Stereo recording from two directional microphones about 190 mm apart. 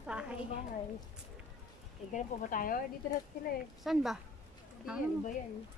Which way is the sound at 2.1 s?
45° left (ahead or behind).